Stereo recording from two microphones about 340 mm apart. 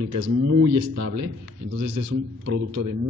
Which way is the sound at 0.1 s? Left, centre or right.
Right.